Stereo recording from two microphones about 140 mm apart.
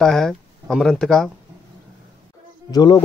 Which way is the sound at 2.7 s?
30° left (ahead or behind).